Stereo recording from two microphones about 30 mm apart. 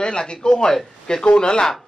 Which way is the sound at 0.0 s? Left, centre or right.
Left.